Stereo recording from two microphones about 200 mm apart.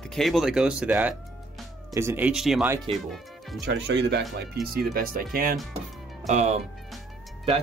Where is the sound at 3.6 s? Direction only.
60° right (ahead or behind).